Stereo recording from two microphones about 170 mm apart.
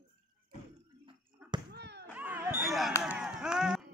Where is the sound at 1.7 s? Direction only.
80° right.